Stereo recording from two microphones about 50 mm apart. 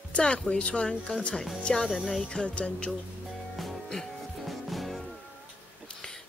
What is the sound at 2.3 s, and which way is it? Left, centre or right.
Speech, left.